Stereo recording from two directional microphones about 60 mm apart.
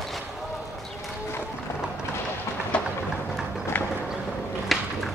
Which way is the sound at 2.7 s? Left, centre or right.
Centre.